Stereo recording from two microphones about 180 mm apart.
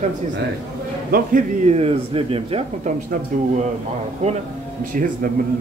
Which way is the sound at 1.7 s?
30° right (ahead or behind).